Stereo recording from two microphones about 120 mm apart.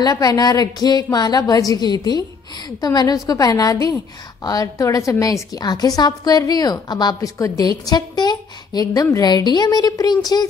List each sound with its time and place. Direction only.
0.0 s a woman's voice: 30° left (ahead or behind)